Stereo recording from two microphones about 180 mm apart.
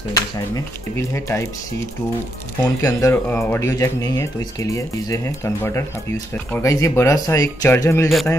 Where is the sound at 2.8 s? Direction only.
15° left (ahead or behind).